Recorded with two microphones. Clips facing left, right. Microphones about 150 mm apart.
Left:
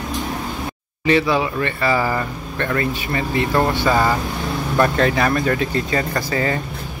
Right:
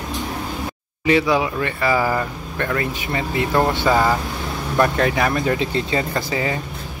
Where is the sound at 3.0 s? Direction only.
20° right (ahead or behind).